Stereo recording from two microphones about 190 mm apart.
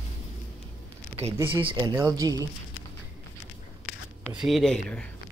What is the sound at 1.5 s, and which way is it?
Speech, 25° right (ahead or behind).